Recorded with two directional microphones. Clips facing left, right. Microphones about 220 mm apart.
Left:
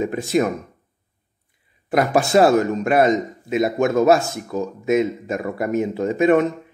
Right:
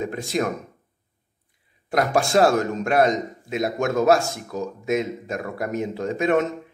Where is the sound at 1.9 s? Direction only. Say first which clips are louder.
Left 3 dB; 5° left (ahead or behind).